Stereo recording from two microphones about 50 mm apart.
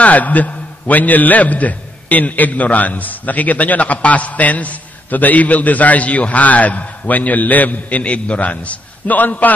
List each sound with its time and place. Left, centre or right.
0.0 s a man's voice: left